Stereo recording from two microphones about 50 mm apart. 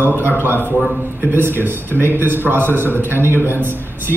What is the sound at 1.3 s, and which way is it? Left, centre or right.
A man's voice, right.